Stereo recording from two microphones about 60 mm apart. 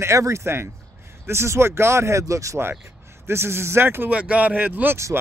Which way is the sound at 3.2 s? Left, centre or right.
Right.